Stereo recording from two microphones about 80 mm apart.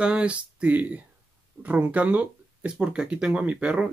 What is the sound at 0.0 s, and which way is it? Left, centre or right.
Speech, centre.